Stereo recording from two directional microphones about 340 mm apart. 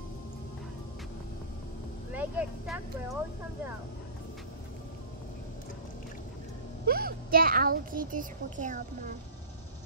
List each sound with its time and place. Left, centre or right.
2.1 s speech: centre
6.9 s a woman's voice: right